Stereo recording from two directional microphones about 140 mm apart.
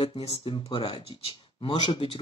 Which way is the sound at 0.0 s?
45° left (ahead or behind).